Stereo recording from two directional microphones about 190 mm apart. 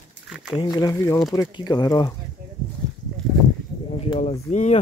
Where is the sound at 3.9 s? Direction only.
30° left (ahead or behind).